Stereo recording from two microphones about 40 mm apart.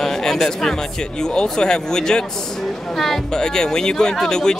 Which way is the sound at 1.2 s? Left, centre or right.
Centre.